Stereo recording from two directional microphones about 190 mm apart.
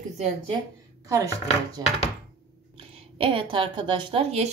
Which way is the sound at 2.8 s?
30° right (ahead or behind).